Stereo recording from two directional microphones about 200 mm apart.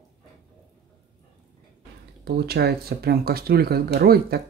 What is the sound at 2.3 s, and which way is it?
Speech, 55° right (ahead or behind).